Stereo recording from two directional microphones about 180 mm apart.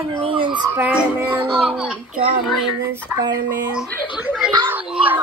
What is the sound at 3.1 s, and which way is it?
Speech, 15° right (ahead or behind).